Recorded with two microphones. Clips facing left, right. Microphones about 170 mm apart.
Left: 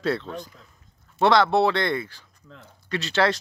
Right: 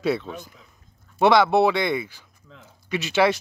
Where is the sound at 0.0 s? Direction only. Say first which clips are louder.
Right 2 dB; 10° right (ahead or behind).